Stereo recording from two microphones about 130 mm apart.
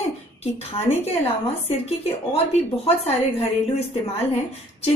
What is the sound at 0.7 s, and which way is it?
A woman's voice, 50° left (ahead or behind).